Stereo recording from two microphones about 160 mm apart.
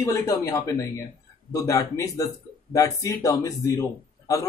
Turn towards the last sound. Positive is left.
turn(degrees=20)  # may be behind; listen again after turning